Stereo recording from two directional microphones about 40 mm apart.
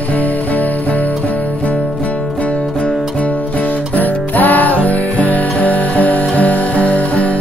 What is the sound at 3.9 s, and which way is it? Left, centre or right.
Music, left.